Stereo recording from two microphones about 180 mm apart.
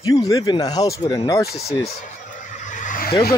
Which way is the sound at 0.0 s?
20° left (ahead or behind).